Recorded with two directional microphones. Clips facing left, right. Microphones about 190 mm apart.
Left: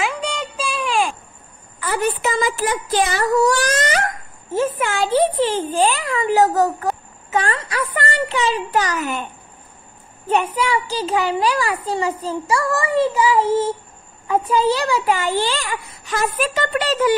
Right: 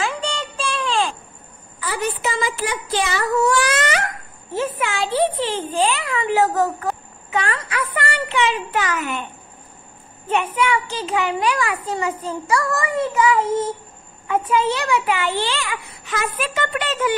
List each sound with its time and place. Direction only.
0.0 s music: centre (ahead or behind)
1.8 s a child's voice: 55° left (ahead or behind); by 9.2 s 40° left (ahead or behind)
10.2 s a child's voice: 40° left (ahead or behind)